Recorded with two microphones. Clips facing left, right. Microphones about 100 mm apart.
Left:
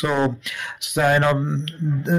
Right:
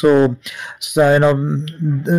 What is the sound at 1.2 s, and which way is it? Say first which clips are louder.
Mantra: right 6 dB; 5° right (ahead or behind).